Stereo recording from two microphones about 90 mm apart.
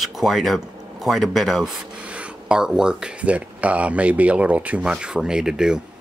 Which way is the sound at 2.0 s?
15° right (ahead or behind).